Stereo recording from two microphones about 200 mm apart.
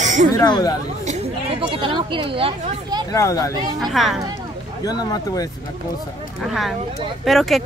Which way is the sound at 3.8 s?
Centre (ahead or behind).